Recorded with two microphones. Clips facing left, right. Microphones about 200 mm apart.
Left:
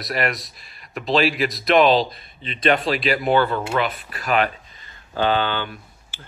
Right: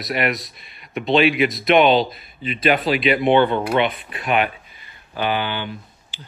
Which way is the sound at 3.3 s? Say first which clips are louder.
Right 3 dB; 25° right (ahead or behind).